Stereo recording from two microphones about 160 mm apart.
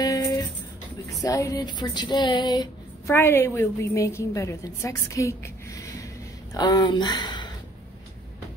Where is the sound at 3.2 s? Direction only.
15° left (ahead or behind).